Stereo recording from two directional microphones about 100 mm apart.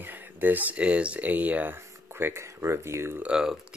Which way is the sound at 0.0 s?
20° right (ahead or behind).